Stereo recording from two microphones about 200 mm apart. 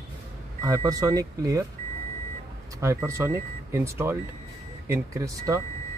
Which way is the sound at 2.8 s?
15° right (ahead or behind).